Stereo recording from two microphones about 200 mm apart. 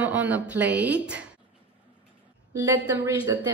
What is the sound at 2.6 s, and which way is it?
Speech, 15° right (ahead or behind).